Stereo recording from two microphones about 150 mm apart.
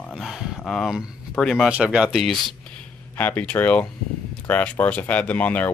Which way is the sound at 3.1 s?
10° left (ahead or behind).